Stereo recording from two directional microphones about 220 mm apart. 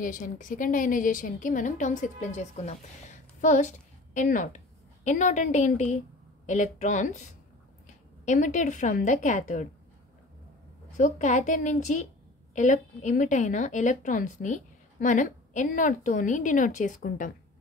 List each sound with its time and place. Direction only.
0.0 s a woman's voice: 35° left (ahead or behind)
8.3 s a woman's voice: 35° left (ahead or behind)
11.0 s a woman's voice: 35° left (ahead or behind)